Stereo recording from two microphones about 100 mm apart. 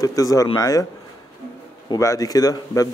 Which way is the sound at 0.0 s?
35° left (ahead or behind).